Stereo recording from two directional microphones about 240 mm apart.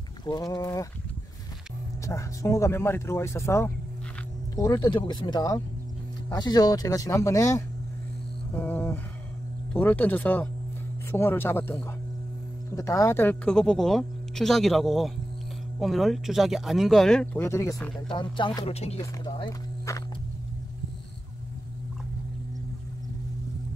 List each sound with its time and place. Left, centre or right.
0.2 s speech: centre
2.0 s speech: centre
8.5 s a sound: centre
9.8 s speech: centre
18.1 s speech: centre